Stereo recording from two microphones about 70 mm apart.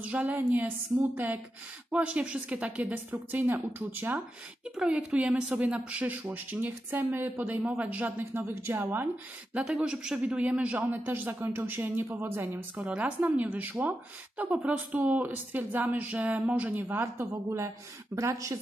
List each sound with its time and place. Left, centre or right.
0.0 s speech: right
1.9 s speech: centre
4.7 s a woman's voice: centre; by 9.1 s right
9.5 s a woman's voice: centre; by 12.4 s right
12.7 s speech: centre; by 18.6 s right